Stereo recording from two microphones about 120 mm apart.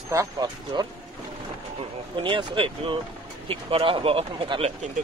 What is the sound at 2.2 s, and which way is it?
Speech, 45° right (ahead or behind).